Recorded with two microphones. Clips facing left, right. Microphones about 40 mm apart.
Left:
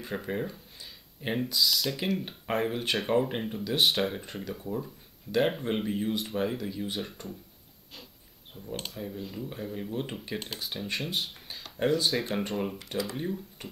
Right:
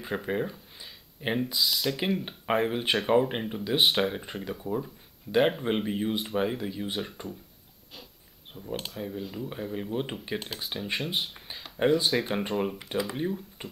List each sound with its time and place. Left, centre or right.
0.0 s speech: centre
8.7 s speech: centre
10.4 s speech: centre
13.6 s a sound: right